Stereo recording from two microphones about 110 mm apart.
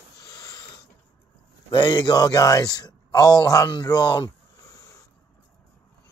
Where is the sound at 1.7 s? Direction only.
45° left (ahead or behind).